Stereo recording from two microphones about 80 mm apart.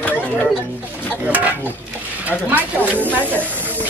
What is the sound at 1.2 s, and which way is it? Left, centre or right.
Speech, centre.